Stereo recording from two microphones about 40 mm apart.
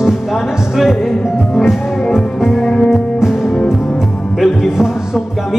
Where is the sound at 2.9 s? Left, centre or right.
Centre.